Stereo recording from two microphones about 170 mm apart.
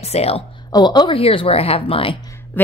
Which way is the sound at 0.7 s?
25° left (ahead or behind).